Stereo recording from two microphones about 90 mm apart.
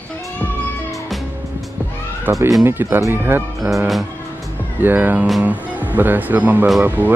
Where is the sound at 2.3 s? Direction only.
25° right (ahead or behind).